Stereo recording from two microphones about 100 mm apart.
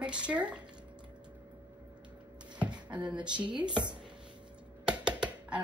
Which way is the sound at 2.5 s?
15° right (ahead or behind).